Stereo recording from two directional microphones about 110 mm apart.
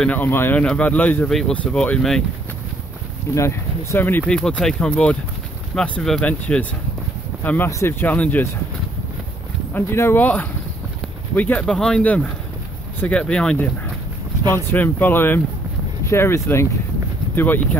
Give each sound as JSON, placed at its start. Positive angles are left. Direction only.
{"t": 0.0, "sound": "speech", "side_deg": 15}
{"t": 3.3, "sound": "speech", "side_deg": 25}
{"t": 4.3, "sound": "speech", "side_deg": 5}
{"t": 9.8, "sound": "speech", "side_deg": 20}